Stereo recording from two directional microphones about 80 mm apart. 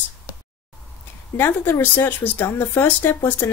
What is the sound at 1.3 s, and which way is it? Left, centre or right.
Speech, left.